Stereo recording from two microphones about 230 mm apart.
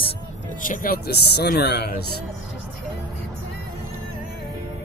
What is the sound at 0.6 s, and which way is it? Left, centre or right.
Speech, left.